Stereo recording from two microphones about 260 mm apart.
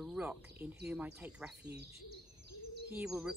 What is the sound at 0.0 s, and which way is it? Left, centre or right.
Speech, centre.